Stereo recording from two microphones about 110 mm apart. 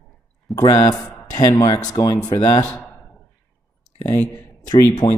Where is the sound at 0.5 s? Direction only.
35° left (ahead or behind).